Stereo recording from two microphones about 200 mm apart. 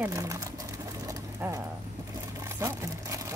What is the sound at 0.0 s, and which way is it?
Pigeon, 15° right (ahead or behind).